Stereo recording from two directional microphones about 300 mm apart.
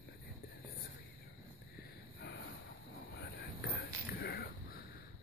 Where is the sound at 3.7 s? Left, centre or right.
Left.